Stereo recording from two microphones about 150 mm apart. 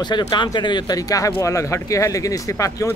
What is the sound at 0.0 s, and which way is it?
Speech, 30° left (ahead or behind).